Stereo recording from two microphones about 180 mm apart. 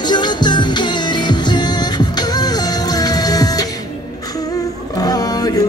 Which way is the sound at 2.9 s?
20° left (ahead or behind).